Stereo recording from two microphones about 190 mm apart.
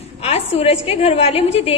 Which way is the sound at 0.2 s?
35° left (ahead or behind).